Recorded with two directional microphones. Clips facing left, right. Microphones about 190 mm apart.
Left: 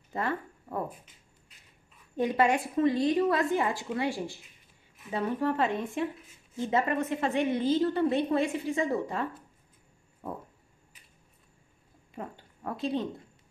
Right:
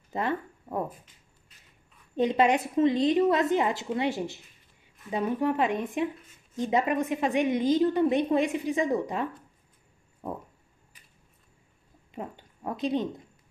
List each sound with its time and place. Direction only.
0.1 s speech: 20° right (ahead or behind)
2.1 s a woman's voice: 20° right (ahead or behind)
12.1 s a woman's voice: 20° right (ahead or behind)